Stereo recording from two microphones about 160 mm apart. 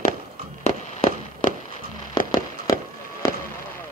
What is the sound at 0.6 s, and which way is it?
Fireworks, 45° left (ahead or behind).